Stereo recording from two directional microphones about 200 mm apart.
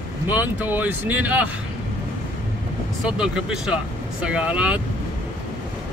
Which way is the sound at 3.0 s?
5° right (ahead or behind).